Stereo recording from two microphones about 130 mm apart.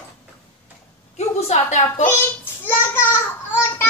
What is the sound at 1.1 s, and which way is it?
Speech, 60° left (ahead or behind).